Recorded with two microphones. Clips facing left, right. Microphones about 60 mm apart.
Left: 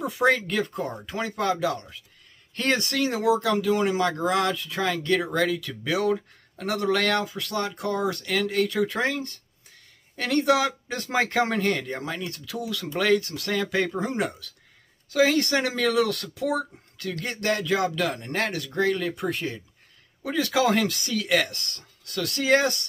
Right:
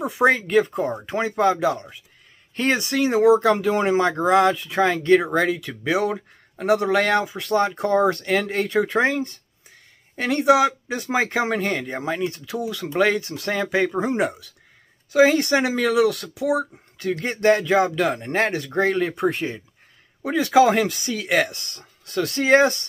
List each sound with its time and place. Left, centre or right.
0.0 s speech: right
17.0 s speech: right